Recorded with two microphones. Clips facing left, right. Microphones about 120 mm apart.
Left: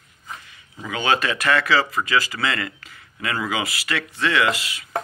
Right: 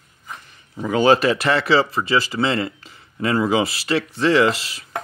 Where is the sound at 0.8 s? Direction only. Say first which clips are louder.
Right 7 dB; 35° right (ahead or behind).